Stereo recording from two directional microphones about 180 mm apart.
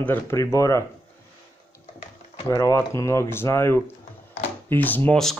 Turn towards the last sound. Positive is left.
turn(degrees=5)  # may be behind; listen again after turning